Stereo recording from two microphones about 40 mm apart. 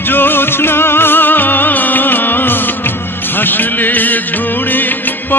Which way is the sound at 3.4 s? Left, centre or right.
Left.